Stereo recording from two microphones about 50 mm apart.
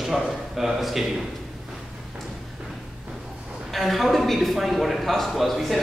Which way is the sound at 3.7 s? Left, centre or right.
Centre.